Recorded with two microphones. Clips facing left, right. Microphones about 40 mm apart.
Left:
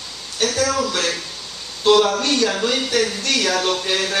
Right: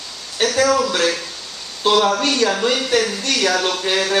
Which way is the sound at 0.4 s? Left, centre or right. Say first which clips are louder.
Right 4 dB; right.